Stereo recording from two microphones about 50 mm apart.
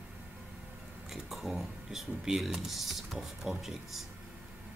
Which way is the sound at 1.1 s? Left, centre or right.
Centre.